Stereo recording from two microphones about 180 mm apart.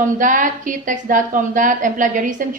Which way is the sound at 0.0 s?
45° right (ahead or behind).